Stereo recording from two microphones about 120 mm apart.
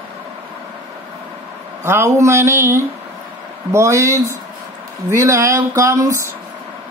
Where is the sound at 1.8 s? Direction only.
20° right (ahead or behind).